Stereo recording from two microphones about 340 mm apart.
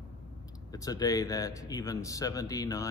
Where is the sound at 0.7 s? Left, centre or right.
Centre.